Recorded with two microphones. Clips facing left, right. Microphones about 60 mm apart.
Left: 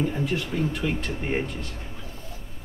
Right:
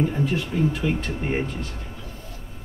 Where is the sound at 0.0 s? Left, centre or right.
Centre.